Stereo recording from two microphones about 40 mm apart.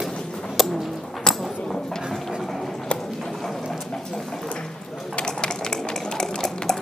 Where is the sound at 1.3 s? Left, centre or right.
Centre.